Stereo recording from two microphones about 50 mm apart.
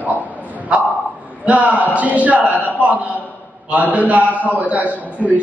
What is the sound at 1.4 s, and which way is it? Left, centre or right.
A man's voice, right.